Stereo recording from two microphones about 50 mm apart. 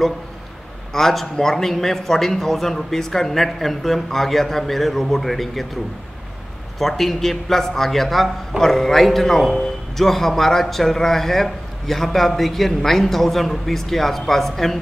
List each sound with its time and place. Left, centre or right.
0.9 s a man's voice: centre
6.8 s a man's voice: centre